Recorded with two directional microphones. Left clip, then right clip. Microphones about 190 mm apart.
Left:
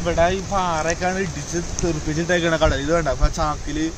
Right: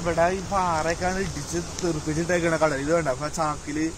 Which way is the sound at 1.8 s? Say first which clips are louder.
Left 3 dB; 15° left (ahead or behind).